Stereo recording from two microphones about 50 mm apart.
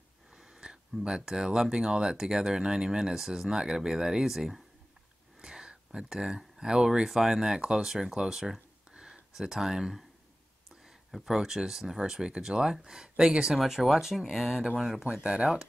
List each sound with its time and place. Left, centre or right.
0.4 s a sound: centre
1.0 s speech: centre
11.1 s speech: centre
15.2 s speech: centre